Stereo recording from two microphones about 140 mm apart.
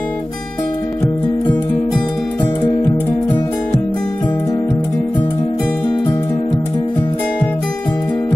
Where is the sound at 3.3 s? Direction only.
20° left (ahead or behind).